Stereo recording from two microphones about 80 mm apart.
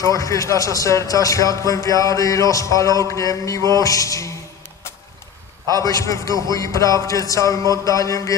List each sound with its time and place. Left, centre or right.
0.0 s speech: left
5.8 s speech: left